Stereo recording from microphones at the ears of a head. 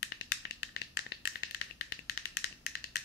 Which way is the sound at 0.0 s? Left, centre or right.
Left.